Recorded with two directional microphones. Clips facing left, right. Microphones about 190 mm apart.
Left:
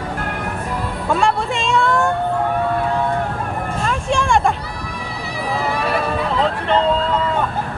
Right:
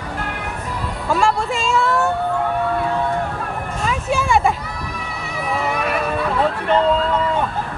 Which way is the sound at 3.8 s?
5° right (ahead or behind).